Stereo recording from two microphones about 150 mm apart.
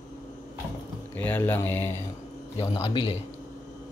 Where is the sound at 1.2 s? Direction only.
10° left (ahead or behind).